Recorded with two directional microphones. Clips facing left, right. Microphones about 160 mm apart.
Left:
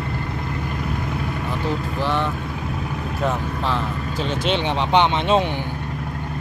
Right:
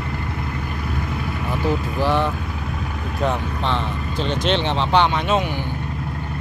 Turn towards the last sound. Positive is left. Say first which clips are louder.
# left 1 dB
turn(degrees=25)  # may be behind; listen again after turning